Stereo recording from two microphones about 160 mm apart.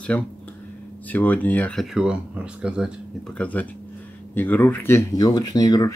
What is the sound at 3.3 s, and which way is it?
Speech, 10° left (ahead or behind).